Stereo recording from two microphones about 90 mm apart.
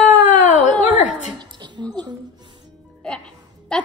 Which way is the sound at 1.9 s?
50° right (ahead or behind).